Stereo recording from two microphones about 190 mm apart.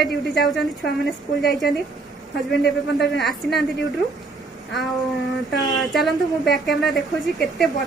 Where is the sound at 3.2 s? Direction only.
Centre (ahead or behind).